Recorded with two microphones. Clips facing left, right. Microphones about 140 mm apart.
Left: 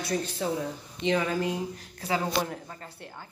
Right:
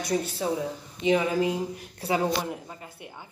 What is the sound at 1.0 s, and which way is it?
Speech, 15° right (ahead or behind).